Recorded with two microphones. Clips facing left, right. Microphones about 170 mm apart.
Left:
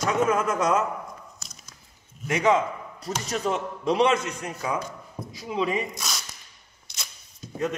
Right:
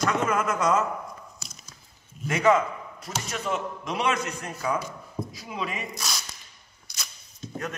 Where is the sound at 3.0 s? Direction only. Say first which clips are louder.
Left 5 dB; 35° left (ahead or behind); by 4.8 s 15° left (ahead or behind).